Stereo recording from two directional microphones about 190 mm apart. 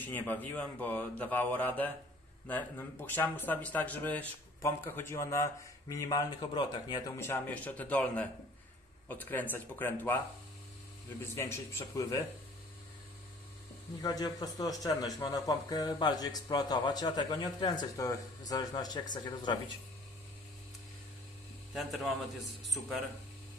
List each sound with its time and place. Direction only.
0.0 s speech: 10° left (ahead or behind)
7.2 s speech: 10° left (ahead or behind)
11.3 s speech: 15° left (ahead or behind)
14.0 s speech: 20° left (ahead or behind)
21.7 s speech: centre (ahead or behind)